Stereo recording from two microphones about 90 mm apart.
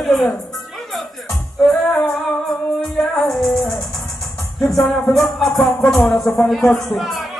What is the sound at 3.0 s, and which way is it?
Music, 5° left (ahead or behind).